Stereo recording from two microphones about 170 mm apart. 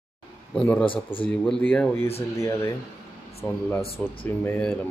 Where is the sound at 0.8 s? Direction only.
30° left (ahead or behind).